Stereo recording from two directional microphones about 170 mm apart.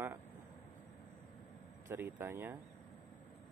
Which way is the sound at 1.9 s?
15° right (ahead or behind).